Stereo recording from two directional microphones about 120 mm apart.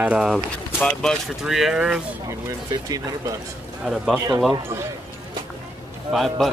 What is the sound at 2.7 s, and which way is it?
Speech, 30° right (ahead or behind).